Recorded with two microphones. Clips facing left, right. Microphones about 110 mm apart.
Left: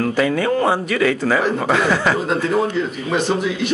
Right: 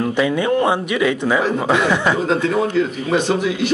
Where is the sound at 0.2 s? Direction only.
5° right (ahead or behind).